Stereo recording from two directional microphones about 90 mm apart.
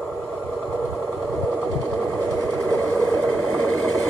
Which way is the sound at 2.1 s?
30° left (ahead or behind).